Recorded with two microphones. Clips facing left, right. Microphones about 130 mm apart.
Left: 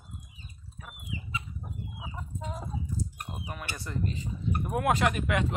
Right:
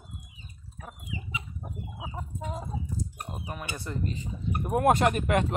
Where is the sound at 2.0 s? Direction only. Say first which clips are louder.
Right 3 dB; 30° right (ahead or behind).